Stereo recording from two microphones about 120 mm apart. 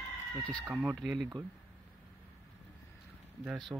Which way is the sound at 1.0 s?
Centre (ahead or behind).